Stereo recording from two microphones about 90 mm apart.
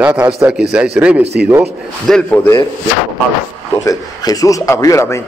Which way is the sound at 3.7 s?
45° left (ahead or behind).